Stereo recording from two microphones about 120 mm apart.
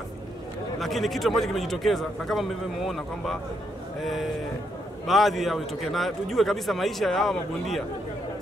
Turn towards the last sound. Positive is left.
turn(degrees=0)  # may be behind; listen again after turning